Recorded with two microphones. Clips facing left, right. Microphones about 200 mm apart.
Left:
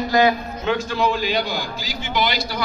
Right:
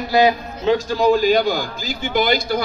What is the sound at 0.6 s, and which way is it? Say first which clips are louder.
A man's voice: right 5 dB; 40° right (ahead or behind).